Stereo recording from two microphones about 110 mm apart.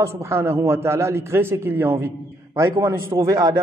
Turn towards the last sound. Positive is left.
turn(degrees=-30)  # may be behind; listen again after turning